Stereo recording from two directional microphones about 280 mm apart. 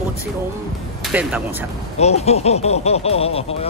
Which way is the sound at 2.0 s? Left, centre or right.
Left.